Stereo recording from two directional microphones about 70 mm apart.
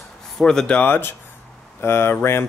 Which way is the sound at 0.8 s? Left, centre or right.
Left.